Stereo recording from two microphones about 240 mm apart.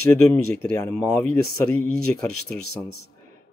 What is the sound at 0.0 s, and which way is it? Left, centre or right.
Speech, centre.